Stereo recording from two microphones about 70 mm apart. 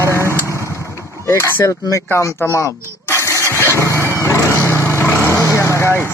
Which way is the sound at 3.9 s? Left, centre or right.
Right.